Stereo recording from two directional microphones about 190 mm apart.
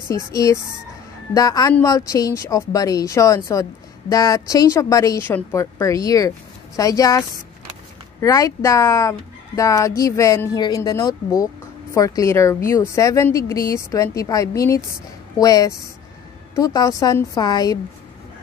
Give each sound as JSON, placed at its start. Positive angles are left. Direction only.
{"t": 0.1, "sound": "a woman's voice", "side_deg": 15}